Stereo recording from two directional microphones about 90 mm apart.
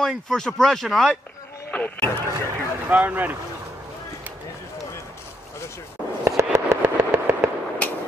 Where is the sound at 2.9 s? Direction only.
20° right (ahead or behind).